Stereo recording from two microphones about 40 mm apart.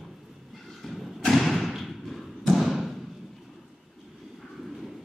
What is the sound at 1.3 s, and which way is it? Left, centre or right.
Thump, centre.